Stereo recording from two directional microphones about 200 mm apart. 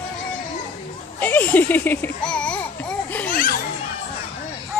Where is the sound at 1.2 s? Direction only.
10° left (ahead or behind).